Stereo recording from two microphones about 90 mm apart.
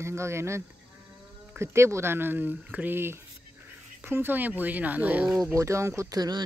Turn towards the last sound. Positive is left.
turn(degrees=-45)  # may be behind; listen again after turning